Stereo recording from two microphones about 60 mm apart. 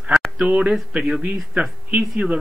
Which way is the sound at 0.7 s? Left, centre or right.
Centre.